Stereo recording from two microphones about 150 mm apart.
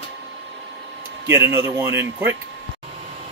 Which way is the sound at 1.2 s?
15° right (ahead or behind).